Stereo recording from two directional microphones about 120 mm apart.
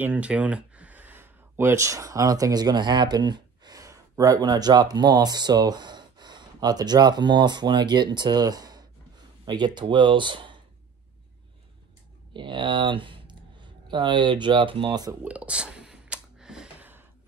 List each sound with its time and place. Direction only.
0.0 s speech: 10° right (ahead or behind); by 10.6 s 40° right (ahead or behind)
12.4 s speech: 40° right (ahead or behind)
15.2 s a sound: 10° right (ahead or behind)